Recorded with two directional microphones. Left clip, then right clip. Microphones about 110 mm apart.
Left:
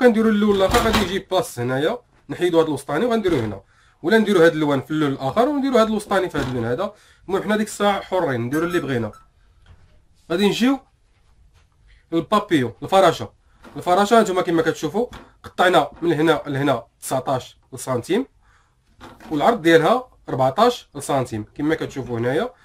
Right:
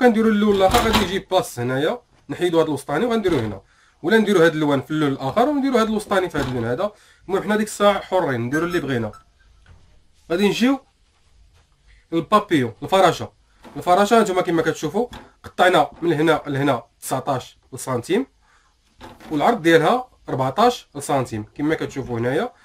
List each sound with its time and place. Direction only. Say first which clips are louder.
0.0 s speech: even; 5° left (ahead or behind)
10.2 s speech: even; 25° left (ahead or behind)
12.1 s speech: right 1 dB; 15° left (ahead or behind)
19.3 s speech: left 1 dB; 10° left (ahead or behind)